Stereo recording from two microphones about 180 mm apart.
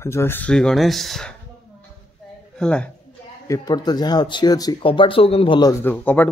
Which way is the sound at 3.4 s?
20° left (ahead or behind).